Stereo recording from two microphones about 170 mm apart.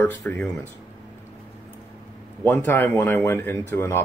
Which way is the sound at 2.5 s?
10° left (ahead or behind).